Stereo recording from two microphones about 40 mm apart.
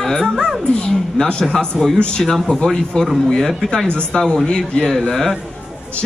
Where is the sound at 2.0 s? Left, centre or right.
Left.